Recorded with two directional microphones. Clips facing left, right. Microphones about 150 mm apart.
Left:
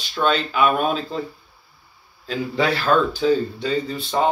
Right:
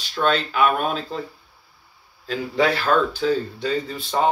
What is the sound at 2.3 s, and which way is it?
Speech, 5° right (ahead or behind).